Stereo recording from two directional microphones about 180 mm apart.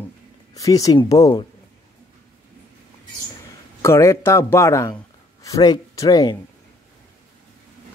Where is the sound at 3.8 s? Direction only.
15° left (ahead or behind).